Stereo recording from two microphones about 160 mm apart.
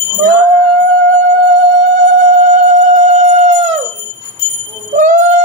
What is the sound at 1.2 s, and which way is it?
Music, 50° right (ahead or behind).